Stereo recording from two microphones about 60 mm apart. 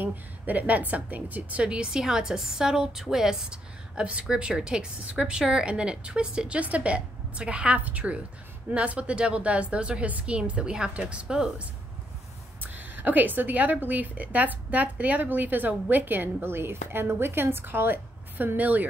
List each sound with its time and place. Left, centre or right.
0.0 s a woman's voice: right; by 11.5 s centre
12.6 s a woman's voice: right